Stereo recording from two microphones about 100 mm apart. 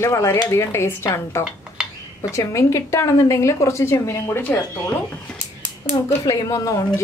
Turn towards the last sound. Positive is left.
turn(degrees=35)  # may be behind; listen again after turning